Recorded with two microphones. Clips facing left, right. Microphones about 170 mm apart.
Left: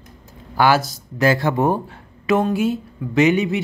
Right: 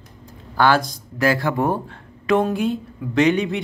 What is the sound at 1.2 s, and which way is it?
Speech, 25° left (ahead or behind).